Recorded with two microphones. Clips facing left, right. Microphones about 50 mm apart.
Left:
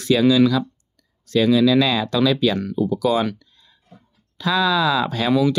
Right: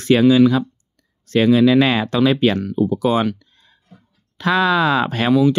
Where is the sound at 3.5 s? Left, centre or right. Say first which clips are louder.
Right 1 dB; right.